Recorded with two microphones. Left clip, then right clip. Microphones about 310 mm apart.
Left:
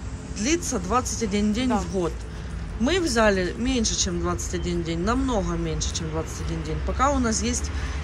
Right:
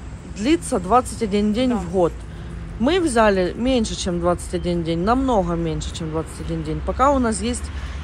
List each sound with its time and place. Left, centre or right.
0.4 s speech: centre